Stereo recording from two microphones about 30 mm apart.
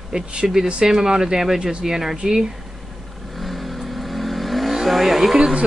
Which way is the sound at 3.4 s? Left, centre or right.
Centre.